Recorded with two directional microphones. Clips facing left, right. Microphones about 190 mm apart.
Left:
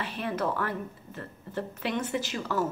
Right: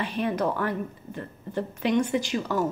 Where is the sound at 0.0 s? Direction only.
15° right (ahead or behind).